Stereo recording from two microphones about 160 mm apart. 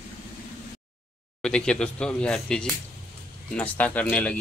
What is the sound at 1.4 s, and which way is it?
Speech, 5° left (ahead or behind).